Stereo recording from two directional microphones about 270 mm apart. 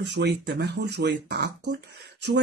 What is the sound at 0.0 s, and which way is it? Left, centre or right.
Speech, right.